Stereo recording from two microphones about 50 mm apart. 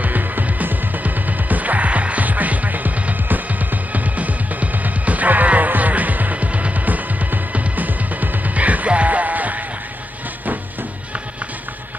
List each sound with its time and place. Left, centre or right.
0.0 s music: right